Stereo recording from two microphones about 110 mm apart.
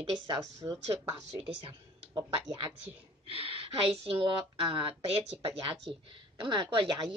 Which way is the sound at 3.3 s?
55° right (ahead or behind).